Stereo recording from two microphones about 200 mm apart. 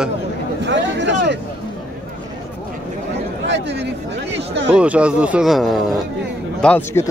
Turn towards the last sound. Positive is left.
turn(degrees=10)  # may be behind; listen again after turning